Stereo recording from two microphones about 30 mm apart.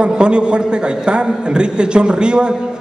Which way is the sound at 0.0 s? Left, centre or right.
Right.